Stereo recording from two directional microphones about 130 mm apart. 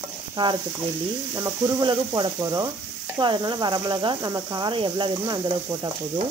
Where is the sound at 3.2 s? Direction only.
35° right (ahead or behind).